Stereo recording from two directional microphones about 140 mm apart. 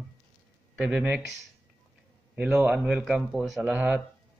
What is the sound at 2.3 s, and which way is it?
A man's voice, 5° right (ahead or behind).